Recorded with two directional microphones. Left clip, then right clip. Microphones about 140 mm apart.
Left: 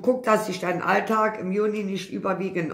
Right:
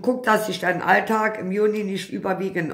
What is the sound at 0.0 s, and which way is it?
Speech, 25° right (ahead or behind).